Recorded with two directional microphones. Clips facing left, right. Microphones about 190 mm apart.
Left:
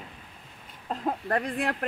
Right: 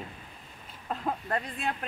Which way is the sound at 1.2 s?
70° left (ahead or behind).